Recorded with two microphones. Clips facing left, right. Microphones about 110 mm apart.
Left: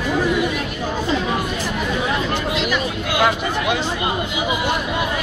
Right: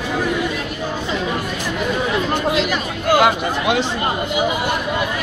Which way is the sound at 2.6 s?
45° right (ahead or behind).